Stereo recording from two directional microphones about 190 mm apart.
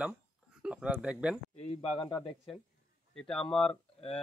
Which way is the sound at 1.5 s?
30° left (ahead or behind).